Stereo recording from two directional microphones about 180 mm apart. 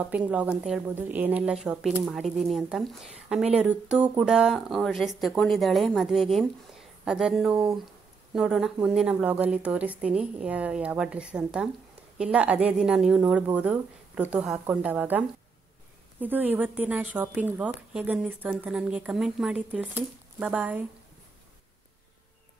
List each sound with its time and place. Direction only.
0.3 s a woman's voice: 5° right (ahead or behind)